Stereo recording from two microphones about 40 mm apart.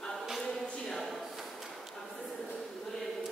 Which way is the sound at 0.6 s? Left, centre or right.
Centre.